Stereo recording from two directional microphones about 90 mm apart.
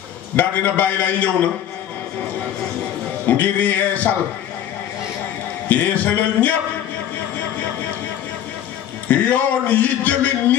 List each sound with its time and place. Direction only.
0.4 s a man's voice: 20° left (ahead or behind)
3.3 s a man's voice: 20° left (ahead or behind)
5.7 s a man's voice: 20° left (ahead or behind)
9.1 s a man's voice: 15° left (ahead or behind)